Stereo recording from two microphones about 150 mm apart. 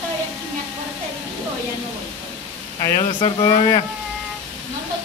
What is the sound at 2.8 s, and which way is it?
Speech, 20° left (ahead or behind).